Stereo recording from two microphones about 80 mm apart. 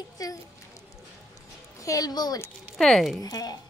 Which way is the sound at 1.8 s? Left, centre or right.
Left.